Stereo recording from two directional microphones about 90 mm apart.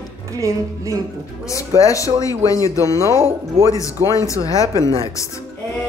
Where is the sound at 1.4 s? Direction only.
35° left (ahead or behind).